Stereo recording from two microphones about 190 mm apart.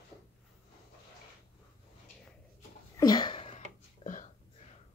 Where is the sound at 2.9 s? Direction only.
20° left (ahead or behind).